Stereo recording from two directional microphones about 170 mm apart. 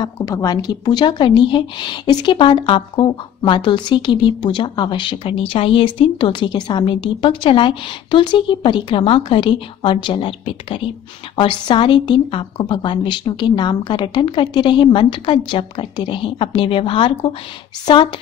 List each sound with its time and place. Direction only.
0.0 s a woman's voice: 20° left (ahead or behind)